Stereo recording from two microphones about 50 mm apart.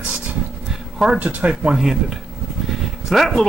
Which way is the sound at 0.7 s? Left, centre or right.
Centre.